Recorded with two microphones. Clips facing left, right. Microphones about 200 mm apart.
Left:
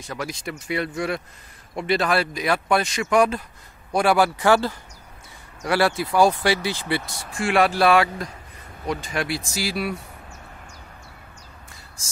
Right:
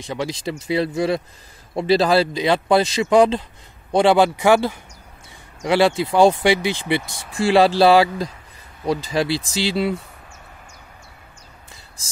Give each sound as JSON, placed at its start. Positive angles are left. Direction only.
{"t": 0.0, "sound": "speech", "side_deg": -25}
{"t": 7.3, "sound": "speech", "side_deg": -30}